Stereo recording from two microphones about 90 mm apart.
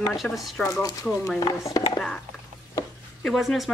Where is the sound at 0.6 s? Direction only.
35° left (ahead or behind).